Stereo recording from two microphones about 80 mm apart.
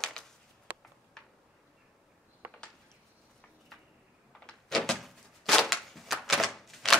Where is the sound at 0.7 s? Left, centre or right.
Right.